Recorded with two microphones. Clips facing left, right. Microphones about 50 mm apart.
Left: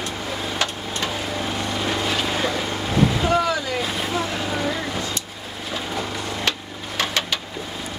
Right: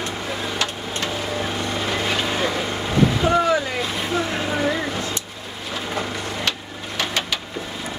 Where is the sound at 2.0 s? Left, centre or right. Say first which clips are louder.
Right 1 dB; centre.